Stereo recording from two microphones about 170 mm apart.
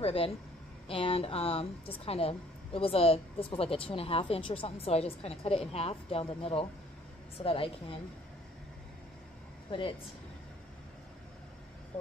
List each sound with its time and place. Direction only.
0.0 s speech: 35° left (ahead or behind)
9.7 s speech: 30° left (ahead or behind)